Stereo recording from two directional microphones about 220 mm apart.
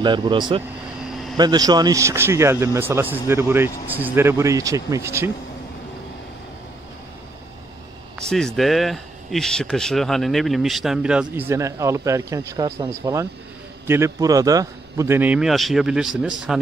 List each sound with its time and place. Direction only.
0.0 s speech: 20° right (ahead or behind)
8.2 s speech: 5° left (ahead or behind)